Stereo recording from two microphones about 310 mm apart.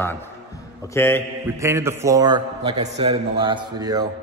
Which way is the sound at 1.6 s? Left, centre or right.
Centre.